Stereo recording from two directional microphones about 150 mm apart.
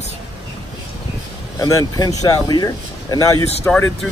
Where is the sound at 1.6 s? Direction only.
20° left (ahead or behind).